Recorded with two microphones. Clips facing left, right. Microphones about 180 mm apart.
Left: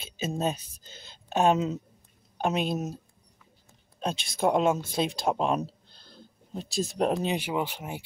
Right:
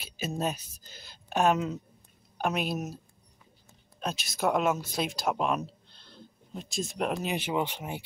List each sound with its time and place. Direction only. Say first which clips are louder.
0.0 s speech: left 2 dB; 25° left (ahead or behind)
4.0 s speech: left 3 dB; 30° left (ahead or behind)
7.3 s speech: even; 10° left (ahead or behind)